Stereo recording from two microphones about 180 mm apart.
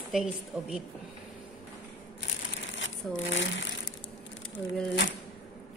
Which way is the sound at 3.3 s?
90° left.